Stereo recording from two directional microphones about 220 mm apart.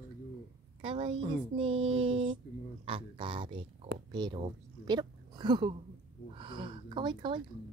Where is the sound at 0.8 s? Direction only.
25° right (ahead or behind).